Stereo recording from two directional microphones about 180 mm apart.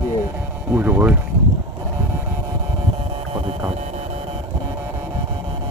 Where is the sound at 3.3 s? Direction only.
30° right (ahead or behind).